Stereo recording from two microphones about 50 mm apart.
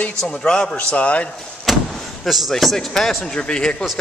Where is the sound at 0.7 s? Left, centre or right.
Left.